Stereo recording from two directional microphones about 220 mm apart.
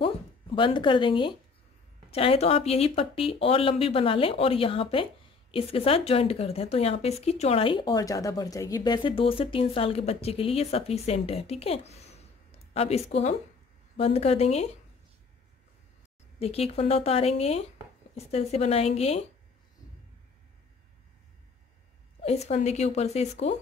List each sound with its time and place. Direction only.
0.0 s music: 25° left (ahead or behind)
2.0 s a woman's voice: 25° left (ahead or behind)
16.3 s a woman's voice: 25° left (ahead or behind)
22.2 s a woman's voice: 30° left (ahead or behind)